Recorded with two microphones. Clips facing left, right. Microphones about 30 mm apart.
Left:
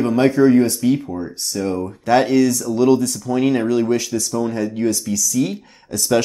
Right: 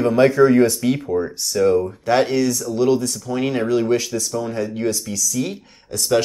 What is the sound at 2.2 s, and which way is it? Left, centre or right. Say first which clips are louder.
Speech: left 3 dB; centre.